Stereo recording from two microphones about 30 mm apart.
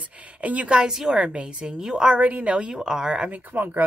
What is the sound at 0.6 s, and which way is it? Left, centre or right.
A woman's voice, right.